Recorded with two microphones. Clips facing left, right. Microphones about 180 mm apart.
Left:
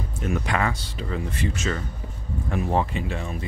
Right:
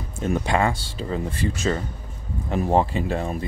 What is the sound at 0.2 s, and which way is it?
Speech, 25° right (ahead or behind).